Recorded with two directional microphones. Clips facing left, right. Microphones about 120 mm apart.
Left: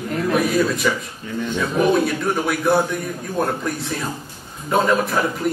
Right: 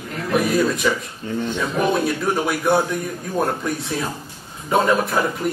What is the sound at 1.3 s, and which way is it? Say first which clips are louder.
Speech: right 2 dB; 30° right (ahead or behind).